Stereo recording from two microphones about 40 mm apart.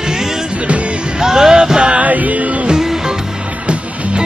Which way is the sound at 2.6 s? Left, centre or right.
Centre.